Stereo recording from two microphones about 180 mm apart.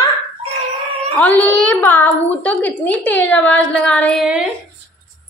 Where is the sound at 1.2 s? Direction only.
5° left (ahead or behind).